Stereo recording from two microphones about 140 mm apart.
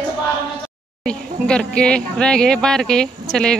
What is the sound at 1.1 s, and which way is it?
Speech, 5° left (ahead or behind).